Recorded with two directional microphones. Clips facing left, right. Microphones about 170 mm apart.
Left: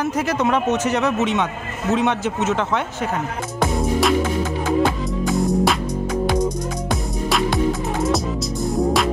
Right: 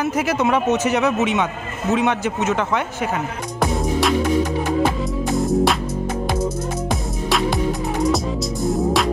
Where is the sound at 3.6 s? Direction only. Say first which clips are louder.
Even; centre (ahead or behind).